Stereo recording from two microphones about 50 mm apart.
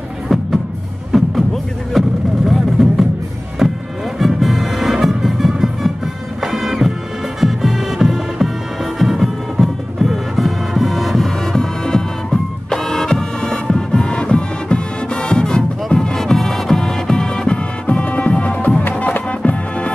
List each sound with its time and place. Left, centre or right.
0.3 s music: centre
6.4 s bagpipes: centre
7.3 s music: centre
17.8 s music: left